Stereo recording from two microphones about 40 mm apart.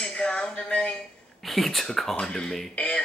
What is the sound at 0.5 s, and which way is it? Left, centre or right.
Music, left.